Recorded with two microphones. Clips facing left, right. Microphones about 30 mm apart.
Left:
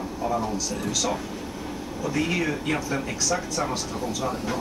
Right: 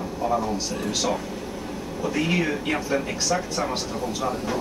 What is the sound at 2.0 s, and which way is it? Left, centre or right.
Speech, centre.